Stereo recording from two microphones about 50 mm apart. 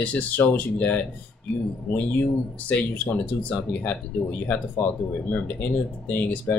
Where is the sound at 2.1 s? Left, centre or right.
Left.